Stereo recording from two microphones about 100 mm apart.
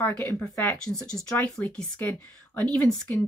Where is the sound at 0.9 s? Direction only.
5° left (ahead or behind).